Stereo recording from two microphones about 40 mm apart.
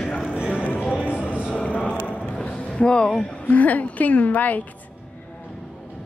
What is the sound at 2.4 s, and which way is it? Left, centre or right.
Music, left.